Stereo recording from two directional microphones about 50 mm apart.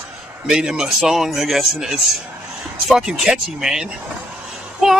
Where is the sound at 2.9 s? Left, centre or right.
Centre.